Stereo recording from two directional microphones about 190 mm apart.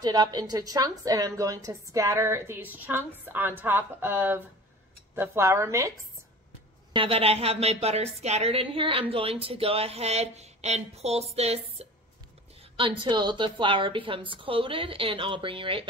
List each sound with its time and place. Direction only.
0.0 s a woman's voice: 20° right (ahead or behind)
6.9 s a woman's voice: 30° right (ahead or behind)
12.7 s a woman's voice: 25° right (ahead or behind)